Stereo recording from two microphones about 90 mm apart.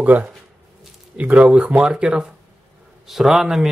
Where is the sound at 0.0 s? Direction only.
15° right (ahead or behind).